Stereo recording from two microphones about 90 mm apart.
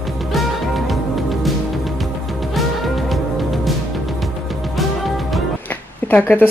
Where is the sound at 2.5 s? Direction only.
Centre (ahead or behind).